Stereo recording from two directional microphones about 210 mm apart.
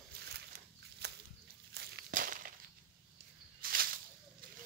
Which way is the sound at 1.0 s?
50° right (ahead or behind).